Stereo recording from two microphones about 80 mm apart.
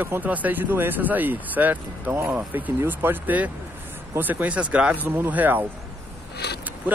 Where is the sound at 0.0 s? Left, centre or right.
Right.